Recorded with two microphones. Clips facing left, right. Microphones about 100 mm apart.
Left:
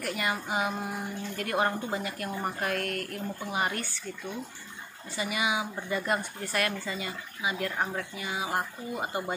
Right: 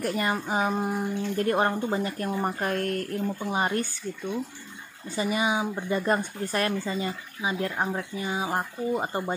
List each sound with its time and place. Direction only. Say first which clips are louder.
0.0 s speech: right 4 dB; 35° right (ahead or behind)
5.1 s speech: right 4 dB; 35° right (ahead or behind)
7.7 s speech: right 3 dB; 20° right (ahead or behind)
8.2 s speech: right 2 dB; 30° right (ahead or behind)